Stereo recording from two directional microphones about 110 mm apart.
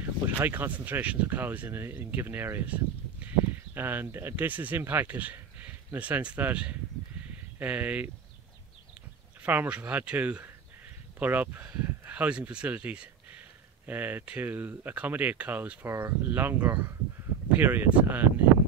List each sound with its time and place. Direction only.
0.0 s speech: 15° right (ahead or behind)
9.4 s speech: 15° right (ahead or behind)
15.9 s speech: 25° right (ahead or behind)